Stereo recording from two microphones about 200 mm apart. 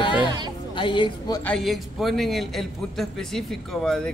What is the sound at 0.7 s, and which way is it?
Speech, 25° left (ahead or behind).